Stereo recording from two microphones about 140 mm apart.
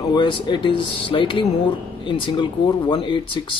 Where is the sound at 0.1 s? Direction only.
35° left (ahead or behind).